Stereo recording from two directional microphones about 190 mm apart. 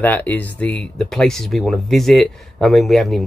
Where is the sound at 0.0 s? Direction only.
10° left (ahead or behind).